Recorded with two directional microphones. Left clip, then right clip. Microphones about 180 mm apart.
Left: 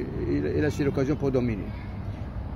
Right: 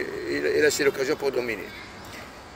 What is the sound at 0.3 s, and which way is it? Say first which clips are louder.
Speech: right 6 dB; 5° right (ahead or behind).